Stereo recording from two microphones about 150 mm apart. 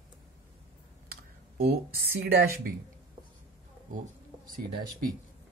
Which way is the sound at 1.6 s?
90° right.